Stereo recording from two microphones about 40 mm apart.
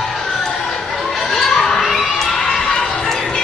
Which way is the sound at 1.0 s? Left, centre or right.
Centre.